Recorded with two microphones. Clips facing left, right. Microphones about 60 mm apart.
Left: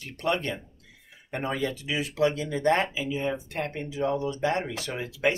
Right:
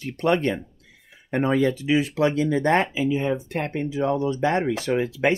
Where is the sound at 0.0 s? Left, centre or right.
Right.